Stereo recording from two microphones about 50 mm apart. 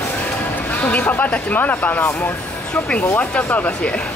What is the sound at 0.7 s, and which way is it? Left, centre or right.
Speech, left.